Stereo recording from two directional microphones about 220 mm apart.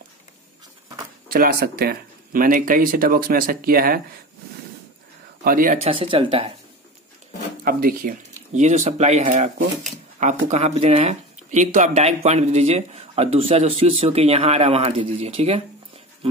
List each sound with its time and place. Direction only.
1.3 s speech: 40° right (ahead or behind)
5.4 s speech: 40° right (ahead or behind)
5.9 s speech: 25° right (ahead or behind)
7.6 s speech: 40° right (ahead or behind)